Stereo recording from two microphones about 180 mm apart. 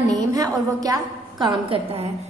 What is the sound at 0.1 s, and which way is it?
A woman's voice, 20° right (ahead or behind).